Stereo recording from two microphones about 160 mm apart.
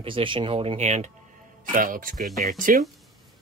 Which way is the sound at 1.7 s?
60° right (ahead or behind).